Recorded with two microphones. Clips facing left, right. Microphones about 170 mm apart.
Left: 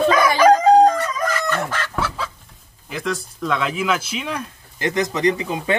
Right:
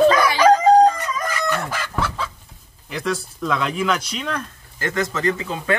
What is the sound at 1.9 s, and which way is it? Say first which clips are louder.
Chicken: right 1 dB; 5° left (ahead or behind).